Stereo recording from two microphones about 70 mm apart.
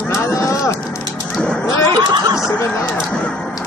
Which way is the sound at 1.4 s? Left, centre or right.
Centre.